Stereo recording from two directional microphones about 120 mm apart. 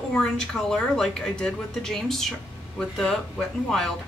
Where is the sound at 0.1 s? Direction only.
5° left (ahead or behind).